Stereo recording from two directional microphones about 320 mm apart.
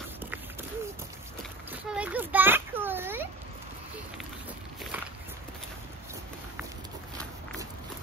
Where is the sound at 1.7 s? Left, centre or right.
Centre.